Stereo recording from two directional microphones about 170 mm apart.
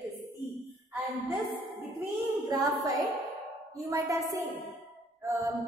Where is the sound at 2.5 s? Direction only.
20° right (ahead or behind).